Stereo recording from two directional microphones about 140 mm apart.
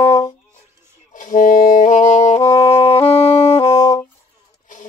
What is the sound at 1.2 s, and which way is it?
Saxophone, 70° left (ahead or behind).